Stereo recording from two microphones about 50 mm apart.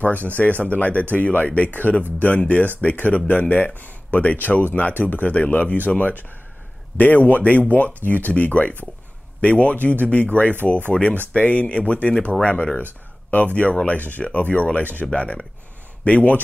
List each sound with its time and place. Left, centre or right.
0.0 s speech: left
15.0 s speech: centre
16.0 s speech: left